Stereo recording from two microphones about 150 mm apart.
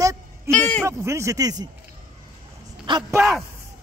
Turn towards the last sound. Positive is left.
turn(degrees=-5)  # may be behind; listen again after turning